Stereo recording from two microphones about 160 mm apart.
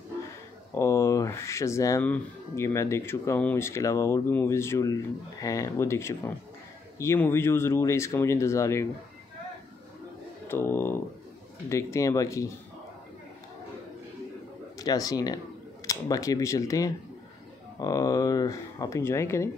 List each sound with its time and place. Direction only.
0.7 s speech: 20° left (ahead or behind)
10.5 s speech: 15° left (ahead or behind)
14.8 s speech: 20° left (ahead or behind)